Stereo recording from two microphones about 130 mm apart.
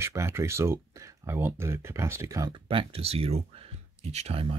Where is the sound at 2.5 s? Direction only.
45° right (ahead or behind).